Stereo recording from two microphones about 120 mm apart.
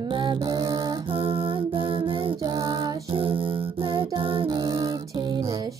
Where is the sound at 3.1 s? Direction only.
50° right (ahead or behind).